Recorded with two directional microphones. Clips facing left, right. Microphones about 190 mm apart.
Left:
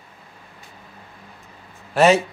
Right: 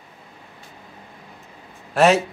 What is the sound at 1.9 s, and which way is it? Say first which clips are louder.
Speech: left 1 dB; centre (ahead or behind).